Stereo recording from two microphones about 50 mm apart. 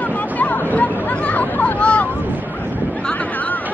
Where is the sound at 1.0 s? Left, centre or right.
Left.